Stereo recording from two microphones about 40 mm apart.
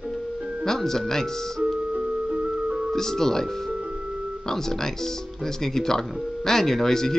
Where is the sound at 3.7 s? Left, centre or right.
Right.